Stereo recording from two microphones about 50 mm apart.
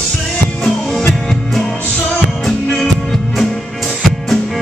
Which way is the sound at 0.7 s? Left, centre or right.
Centre.